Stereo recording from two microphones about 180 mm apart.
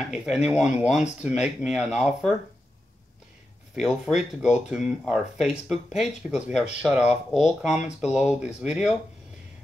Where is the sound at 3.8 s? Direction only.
5° right (ahead or behind).